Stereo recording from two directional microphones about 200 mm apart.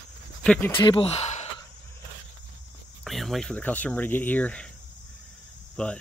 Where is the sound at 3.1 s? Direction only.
Centre (ahead or behind).